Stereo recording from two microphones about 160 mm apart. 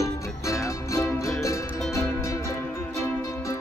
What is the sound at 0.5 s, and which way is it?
Music, 20° left (ahead or behind).